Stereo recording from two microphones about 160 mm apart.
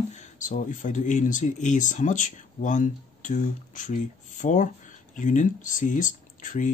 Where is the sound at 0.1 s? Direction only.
50° left (ahead or behind).